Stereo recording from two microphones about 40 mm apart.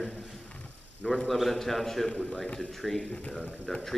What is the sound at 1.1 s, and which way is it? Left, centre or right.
Speech, centre.